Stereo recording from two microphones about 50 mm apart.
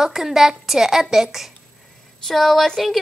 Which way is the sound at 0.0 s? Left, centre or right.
Centre.